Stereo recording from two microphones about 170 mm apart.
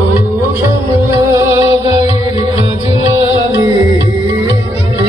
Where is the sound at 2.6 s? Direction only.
30° left (ahead or behind).